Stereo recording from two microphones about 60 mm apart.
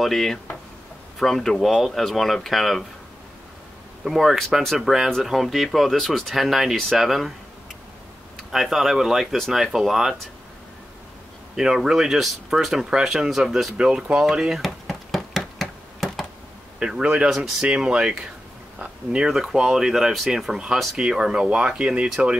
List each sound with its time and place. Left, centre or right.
0.0 s speech: centre
4.0 s speech: centre
8.5 s speech: centre
11.5 s speech: centre
13.7 s speech: centre
14.6 s knock: centre
16.8 s speech: centre